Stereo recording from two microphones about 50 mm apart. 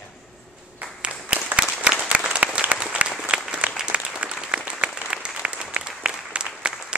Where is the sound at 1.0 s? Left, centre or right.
Right.